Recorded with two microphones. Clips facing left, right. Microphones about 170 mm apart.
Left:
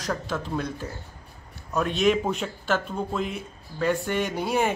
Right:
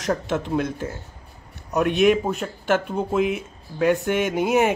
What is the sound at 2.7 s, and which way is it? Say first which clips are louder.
A man's voice: right 5 dB; 20° right (ahead or behind).